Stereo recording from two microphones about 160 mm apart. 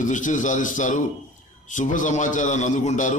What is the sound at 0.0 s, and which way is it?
A man's voice, 50° left (ahead or behind).